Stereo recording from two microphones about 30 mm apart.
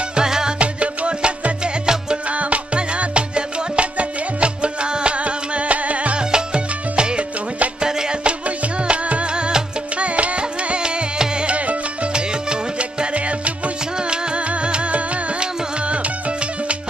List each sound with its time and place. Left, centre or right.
0.1 s music: right
0.6 s music: right
1.6 s music: right
2.3 s music: right
6.1 s music: right
12.1 s music: right
14.5 s music: right